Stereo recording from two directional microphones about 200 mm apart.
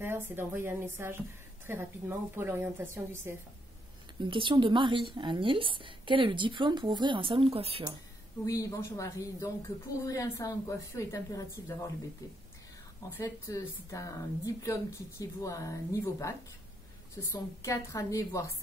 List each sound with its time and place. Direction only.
0.0 s a woman's voice: 10° right (ahead or behind)
4.2 s a woman's voice: 25° right (ahead or behind)
8.5 s a woman's voice: 15° left (ahead or behind)
13.2 s a woman's voice: 15° left (ahead or behind)